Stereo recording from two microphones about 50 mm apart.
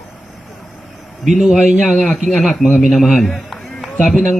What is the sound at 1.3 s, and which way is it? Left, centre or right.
Speech, centre.